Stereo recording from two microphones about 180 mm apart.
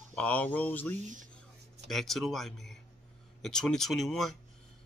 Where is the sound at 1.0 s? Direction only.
45° right (ahead or behind).